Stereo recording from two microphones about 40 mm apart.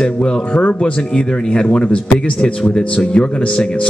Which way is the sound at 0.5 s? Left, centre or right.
Left.